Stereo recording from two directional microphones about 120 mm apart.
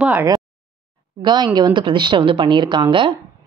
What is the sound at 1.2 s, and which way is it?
A woman's voice, 40° right (ahead or behind).